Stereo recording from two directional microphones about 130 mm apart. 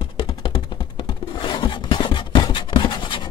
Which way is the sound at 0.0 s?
40° left (ahead or behind).